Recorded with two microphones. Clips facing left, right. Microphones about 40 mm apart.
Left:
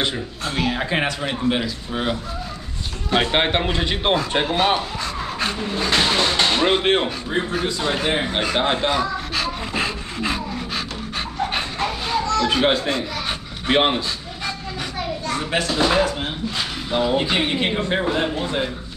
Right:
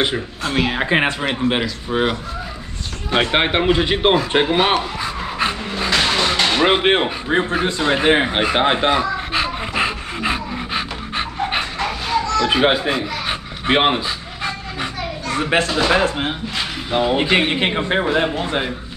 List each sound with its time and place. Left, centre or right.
0.5 s a man's voice: right
4.7 s pant: centre
6.6 s a sound: right
15.3 s speech: right
16.9 s speech: right